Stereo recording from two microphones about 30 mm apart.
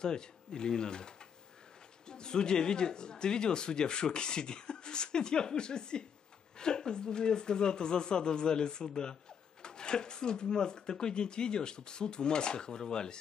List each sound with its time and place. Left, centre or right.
0.0 s speech: left